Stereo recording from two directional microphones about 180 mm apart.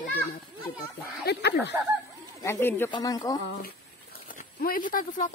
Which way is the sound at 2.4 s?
15° left (ahead or behind).